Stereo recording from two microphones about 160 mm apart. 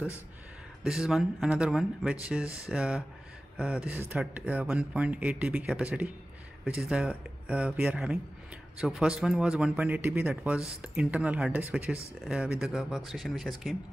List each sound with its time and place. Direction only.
0.8 s speech: 5° right (ahead or behind)
2.4 s speech: 20° left (ahead or behind)
2.7 s speech: 5° right (ahead or behind)